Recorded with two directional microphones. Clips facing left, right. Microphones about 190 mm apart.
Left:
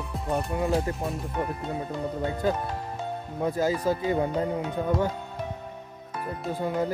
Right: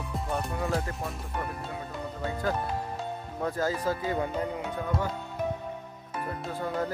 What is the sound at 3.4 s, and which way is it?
Music, 15° left (ahead or behind).